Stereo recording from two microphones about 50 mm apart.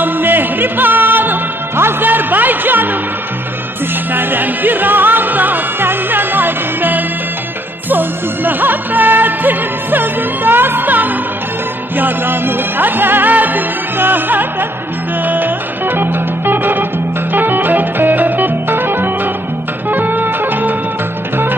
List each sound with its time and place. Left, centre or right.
0.0 s music: right
4.1 s music: right